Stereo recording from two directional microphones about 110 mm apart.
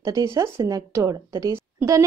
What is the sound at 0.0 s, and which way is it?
A woman's voice, 30° right (ahead or behind).